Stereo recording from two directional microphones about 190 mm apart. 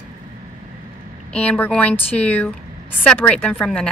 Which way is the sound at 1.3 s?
10° left (ahead or behind).